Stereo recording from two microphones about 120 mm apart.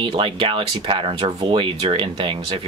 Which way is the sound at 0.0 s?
45° right (ahead or behind).